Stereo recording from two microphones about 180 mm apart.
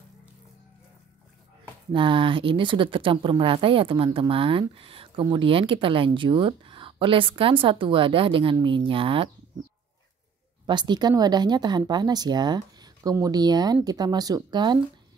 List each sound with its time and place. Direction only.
1.9 s speech: 30° right (ahead or behind)
10.7 s speech: 25° right (ahead or behind)